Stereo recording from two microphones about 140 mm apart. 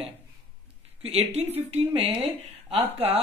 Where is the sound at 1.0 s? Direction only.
45° right (ahead or behind).